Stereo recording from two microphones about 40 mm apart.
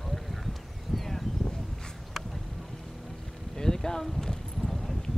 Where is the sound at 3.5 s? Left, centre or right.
Centre.